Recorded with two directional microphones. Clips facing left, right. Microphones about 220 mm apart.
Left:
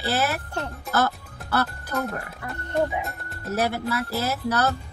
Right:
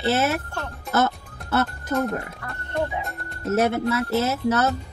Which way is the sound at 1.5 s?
20° right (ahead or behind).